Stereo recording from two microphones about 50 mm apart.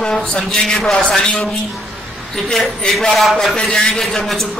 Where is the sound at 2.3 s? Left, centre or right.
Centre.